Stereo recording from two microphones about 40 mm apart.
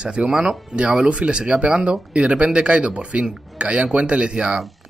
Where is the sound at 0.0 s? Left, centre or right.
Right.